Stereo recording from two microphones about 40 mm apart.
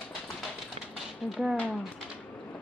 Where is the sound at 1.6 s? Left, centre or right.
Left.